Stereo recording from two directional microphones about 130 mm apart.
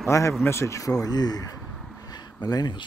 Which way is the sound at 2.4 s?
30° left (ahead or behind).